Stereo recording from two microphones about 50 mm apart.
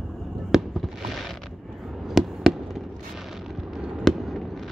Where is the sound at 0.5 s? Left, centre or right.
Centre.